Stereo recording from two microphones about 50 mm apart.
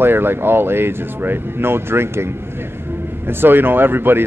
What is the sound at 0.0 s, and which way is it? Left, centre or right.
Speech, right.